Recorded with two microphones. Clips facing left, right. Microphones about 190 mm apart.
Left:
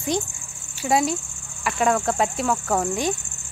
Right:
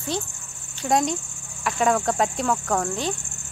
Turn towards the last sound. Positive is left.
turn(degrees=10)  # may be behind; listen again after turning